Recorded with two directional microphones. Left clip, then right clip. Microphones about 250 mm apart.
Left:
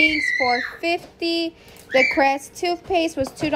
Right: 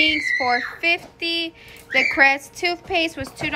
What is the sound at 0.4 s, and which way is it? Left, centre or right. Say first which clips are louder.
A woman's voice: even; centre.